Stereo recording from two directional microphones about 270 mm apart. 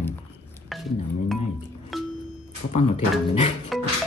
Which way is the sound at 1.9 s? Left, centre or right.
Centre.